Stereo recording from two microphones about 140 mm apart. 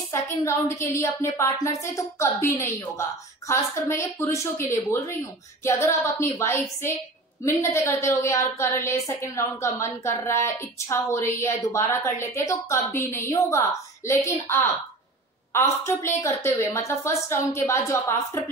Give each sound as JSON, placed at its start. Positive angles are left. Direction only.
{"t": 0.1, "sound": "a woman's voice", "side_deg": 20}